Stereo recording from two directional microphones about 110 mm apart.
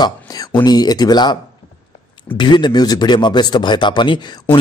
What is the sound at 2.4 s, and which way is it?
Speech, 45° left (ahead or behind).